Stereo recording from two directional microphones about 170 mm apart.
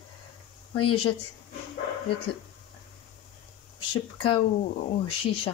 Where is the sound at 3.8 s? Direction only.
30° left (ahead or behind).